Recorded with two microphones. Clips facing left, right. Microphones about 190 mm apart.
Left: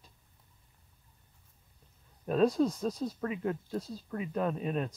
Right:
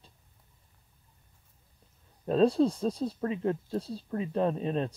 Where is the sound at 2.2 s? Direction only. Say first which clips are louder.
Right 3 dB; 30° right (ahead or behind).